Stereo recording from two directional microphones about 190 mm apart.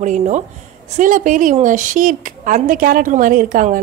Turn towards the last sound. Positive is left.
turn(degrees=-45)  # may be behind; listen again after turning